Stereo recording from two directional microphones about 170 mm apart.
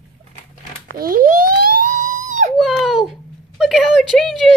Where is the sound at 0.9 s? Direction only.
60° right (ahead or behind).